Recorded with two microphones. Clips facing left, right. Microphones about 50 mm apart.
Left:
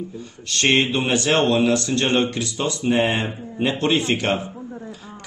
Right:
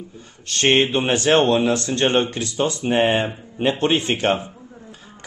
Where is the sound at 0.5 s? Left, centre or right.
Right.